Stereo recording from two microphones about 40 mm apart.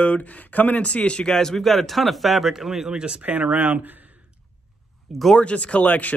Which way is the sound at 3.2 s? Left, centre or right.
Right.